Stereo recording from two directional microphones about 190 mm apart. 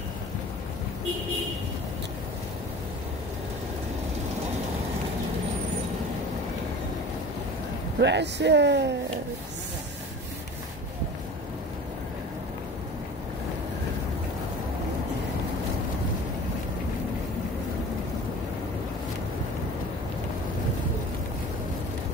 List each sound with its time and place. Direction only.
8.0 s speech: 65° right (ahead or behind)